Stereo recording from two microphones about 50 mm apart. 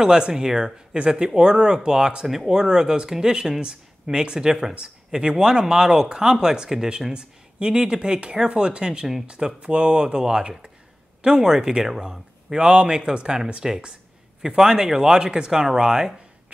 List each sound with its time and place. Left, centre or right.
0.0 s speech: centre